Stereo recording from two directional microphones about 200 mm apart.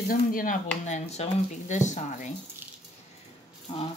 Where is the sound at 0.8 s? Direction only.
35° left (ahead or behind).